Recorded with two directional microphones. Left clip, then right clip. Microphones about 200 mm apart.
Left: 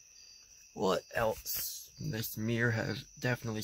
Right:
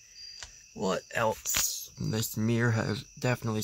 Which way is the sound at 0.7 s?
15° left (ahead or behind).